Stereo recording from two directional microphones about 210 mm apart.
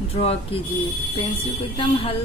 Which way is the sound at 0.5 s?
25° left (ahead or behind).